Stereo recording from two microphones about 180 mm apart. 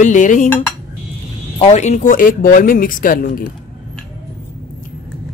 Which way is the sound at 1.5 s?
35° left (ahead or behind).